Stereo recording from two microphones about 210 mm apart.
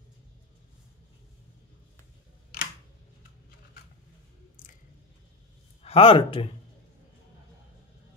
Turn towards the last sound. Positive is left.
turn(degrees=25)  # may be behind; listen again after turning